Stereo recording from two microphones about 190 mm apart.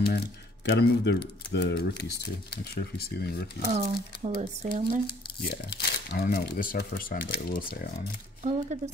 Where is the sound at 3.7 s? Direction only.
35° right (ahead or behind).